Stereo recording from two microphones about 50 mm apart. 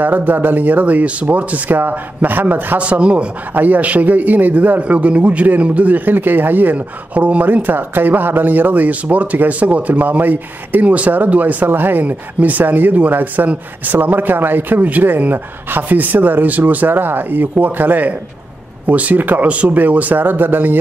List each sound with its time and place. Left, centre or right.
0.0 s a man's voice: right
2.8 s a man's voice: right
3.5 s a man's voice: right
19.4 s a man's voice: right
19.7 s a man's voice: right